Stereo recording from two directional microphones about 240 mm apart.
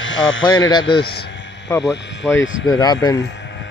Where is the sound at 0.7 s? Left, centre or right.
Centre.